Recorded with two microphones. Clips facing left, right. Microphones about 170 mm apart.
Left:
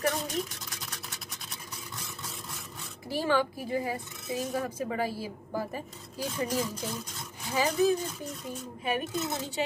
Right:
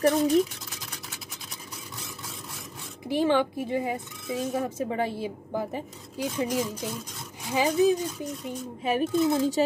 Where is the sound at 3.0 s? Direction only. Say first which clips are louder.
Right 4 dB; 20° right (ahead or behind).